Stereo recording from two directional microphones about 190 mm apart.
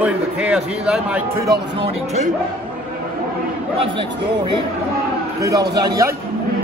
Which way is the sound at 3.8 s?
25° right (ahead or behind).